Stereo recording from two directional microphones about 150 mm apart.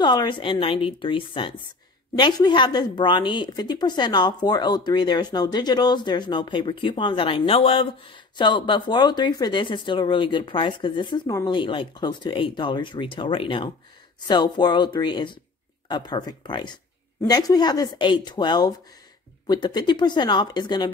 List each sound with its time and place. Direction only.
0.0 s a woman's voice: 30° left (ahead or behind)